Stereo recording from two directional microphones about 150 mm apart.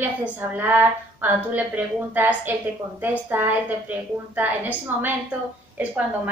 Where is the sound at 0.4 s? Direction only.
10° right (ahead or behind).